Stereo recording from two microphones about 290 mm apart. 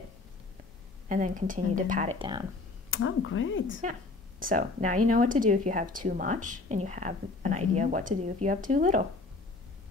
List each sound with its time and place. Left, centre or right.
1.0 s speech: right
2.9 s speech: left
4.4 s speech: right